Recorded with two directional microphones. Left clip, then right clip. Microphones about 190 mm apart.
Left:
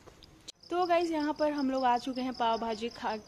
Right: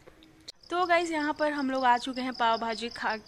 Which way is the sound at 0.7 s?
5° right (ahead or behind).